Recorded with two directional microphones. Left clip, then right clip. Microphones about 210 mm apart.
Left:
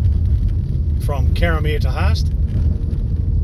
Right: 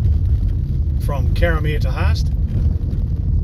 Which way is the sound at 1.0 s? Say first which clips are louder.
Right 1 dB; 20° left (ahead or behind).